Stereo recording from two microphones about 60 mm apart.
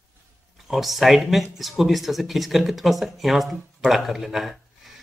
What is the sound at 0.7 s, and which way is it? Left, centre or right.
A man's voice, centre.